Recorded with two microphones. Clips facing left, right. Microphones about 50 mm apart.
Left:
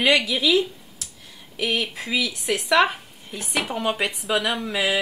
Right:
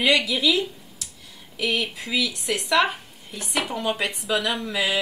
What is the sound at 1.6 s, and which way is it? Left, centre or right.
Speech, left.